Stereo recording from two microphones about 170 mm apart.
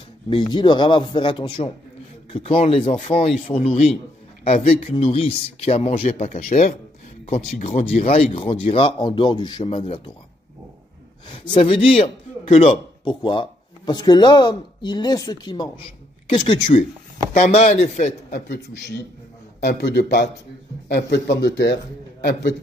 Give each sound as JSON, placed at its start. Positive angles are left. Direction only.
{"t": 0.3, "sound": "a man's voice", "side_deg": 30}
{"t": 7.9, "sound": "speech", "side_deg": 35}
{"t": 11.2, "sound": "a man's voice", "side_deg": 30}
{"t": 17.3, "sound": "speech", "side_deg": 40}
{"t": 18.3, "sound": "a man's voice", "side_deg": 75}